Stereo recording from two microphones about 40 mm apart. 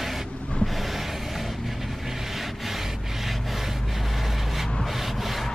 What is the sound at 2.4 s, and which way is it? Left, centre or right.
Rub, centre.